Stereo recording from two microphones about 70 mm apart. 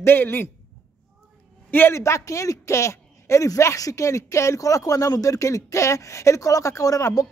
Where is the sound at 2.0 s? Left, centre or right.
Left.